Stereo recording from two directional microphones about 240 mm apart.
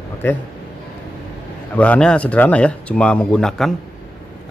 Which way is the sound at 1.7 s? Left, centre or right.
Centre.